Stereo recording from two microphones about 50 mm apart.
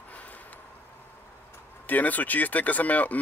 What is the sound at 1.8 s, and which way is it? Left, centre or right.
Speech, left.